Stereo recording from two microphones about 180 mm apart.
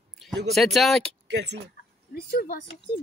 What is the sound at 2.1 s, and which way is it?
Speech, 55° left (ahead or behind).